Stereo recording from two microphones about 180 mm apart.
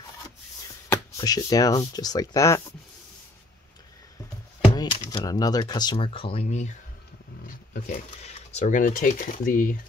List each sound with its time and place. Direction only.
0.8 s speech: 20° left (ahead or behind)
4.7 s speech: 25° left (ahead or behind); by 6.8 s 40° left (ahead or behind)
7.4 s roaring cats: 50° left (ahead or behind)
8.5 s speech: 45° left (ahead or behind)